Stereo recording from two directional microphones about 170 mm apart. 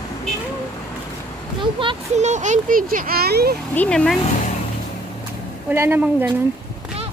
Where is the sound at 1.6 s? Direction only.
30° right (ahead or behind).